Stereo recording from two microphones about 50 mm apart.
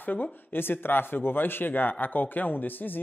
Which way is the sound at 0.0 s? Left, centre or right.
Left.